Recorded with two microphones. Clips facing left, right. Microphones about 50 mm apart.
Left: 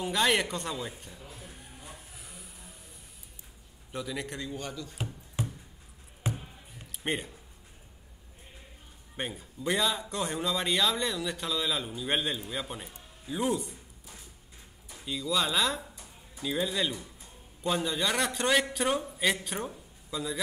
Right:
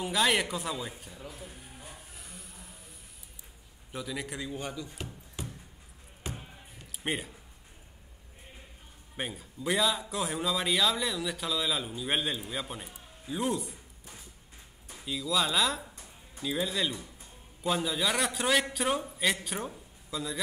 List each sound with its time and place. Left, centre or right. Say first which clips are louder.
0.0 s a man's voice: even; centre
1.4 s a sound: right 1 dB; centre
3.9 s a man's voice: left 1 dB; centre
5.4 s a sound: left 6 dB; left
7.0 s speech: left 1 dB; centre
9.1 s a man's voice: left 1 dB; centre
15.0 s a man's voice: even; centre